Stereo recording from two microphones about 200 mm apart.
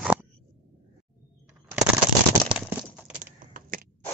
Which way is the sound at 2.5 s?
5° right (ahead or behind).